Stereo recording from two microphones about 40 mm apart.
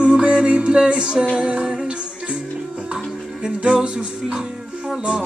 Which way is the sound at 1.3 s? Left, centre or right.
Right.